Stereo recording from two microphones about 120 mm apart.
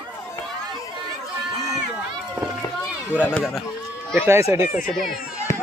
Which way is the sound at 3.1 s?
10° right (ahead or behind).